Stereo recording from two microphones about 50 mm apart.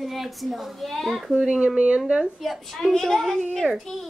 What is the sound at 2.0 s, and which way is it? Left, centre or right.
Speech, centre.